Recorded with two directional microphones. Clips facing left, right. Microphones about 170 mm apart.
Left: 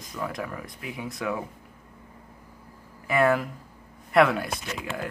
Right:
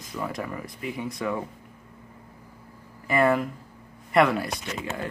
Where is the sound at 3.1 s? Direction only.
Centre (ahead or behind).